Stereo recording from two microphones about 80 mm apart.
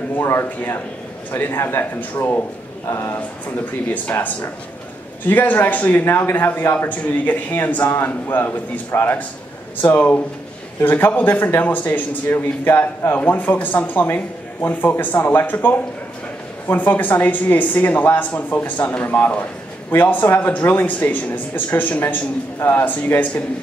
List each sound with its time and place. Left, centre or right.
0.2 s a man's voice: left